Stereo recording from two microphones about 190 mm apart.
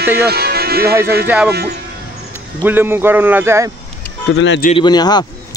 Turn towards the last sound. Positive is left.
turn(degrees=20)  # may be behind; listen again after turning